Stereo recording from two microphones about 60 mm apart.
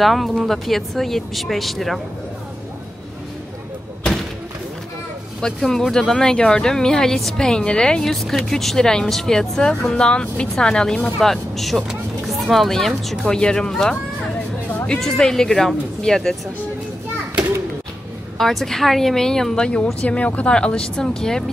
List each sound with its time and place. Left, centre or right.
0.0 s speech: centre
5.4 s speech: centre
11.1 s speech: centre
18.4 s speech: centre